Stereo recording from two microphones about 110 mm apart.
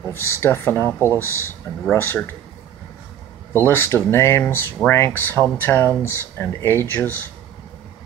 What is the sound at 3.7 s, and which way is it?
A man's voice, 20° left (ahead or behind).